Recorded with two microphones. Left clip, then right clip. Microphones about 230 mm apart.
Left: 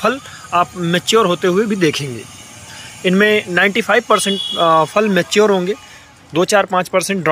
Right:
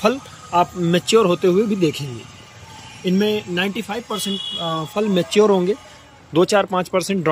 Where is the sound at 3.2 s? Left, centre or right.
Centre.